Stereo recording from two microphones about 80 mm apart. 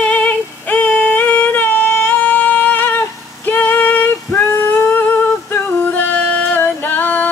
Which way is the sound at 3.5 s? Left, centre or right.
Left.